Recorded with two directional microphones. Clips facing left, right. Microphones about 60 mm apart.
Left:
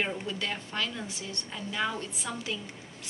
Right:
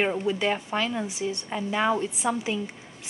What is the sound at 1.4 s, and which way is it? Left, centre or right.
Speech, right.